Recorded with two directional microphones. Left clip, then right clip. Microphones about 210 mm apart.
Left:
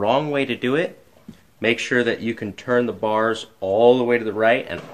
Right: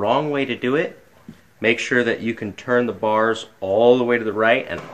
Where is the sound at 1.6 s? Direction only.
5° left (ahead or behind).